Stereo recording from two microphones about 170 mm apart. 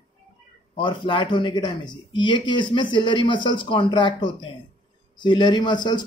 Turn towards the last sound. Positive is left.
turn(degrees=25)  # may be behind; listen again after turning